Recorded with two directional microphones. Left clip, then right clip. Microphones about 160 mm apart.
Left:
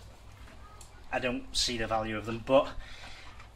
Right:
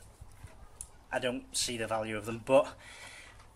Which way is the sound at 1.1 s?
35° right (ahead or behind).